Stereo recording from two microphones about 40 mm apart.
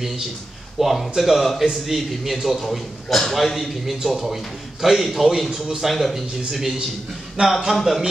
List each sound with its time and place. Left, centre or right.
0.7 s a man's voice: centre
7.4 s a man's voice: right
7.7 s a man's voice: centre